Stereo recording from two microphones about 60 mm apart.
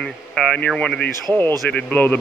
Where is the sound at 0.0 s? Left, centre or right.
Centre.